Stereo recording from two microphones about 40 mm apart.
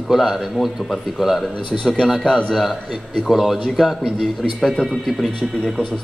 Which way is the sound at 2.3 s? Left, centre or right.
Centre.